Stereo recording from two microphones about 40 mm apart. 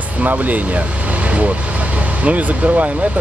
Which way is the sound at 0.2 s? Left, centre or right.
Right.